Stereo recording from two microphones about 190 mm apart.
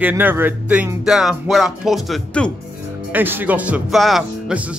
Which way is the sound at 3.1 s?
10° right (ahead or behind).